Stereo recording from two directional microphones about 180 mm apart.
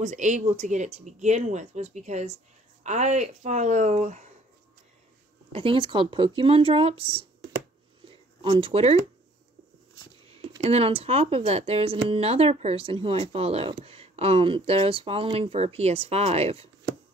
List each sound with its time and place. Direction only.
0.0 s speech: 40° right (ahead or behind)
5.5 s speech: 30° right (ahead or behind)
8.1 s a sound: 30° right (ahead or behind)
10.3 s speech: 35° right (ahead or behind)